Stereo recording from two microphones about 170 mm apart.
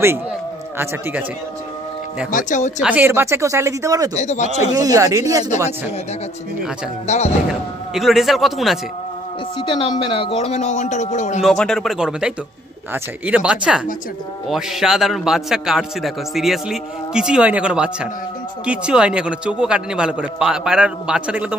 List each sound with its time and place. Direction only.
2.3 s speech: 45° left (ahead or behind)
2.8 s speech: 10° right (ahead or behind)
4.1 s speech: 45° left (ahead or behind)
4.7 s speech: 20° right (ahead or behind)
7.1 s speech: 40° left (ahead or behind)
7.9 s a man's voice: centre (ahead or behind)
9.6 s speech: 30° left (ahead or behind); by 11.4 s 45° left (ahead or behind)
11.4 s a man's voice: 5° left (ahead or behind)